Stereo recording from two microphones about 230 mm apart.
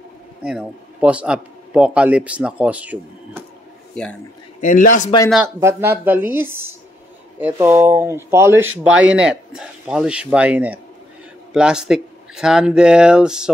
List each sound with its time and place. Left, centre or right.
0.4 s a man's voice: centre
4.6 s a man's voice: left
5.3 s a woman's voice: centre